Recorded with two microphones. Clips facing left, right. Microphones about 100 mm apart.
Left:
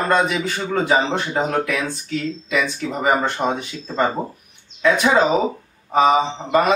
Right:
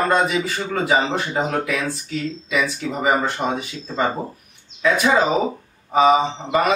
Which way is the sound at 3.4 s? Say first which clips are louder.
Left 2 dB; 20° left (ahead or behind).